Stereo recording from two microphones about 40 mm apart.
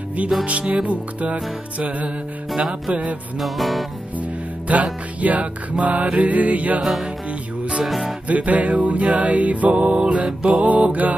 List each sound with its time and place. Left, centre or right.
0.5 s music: right
3.3 s music: centre
4.2 s music: right
8.3 s music: right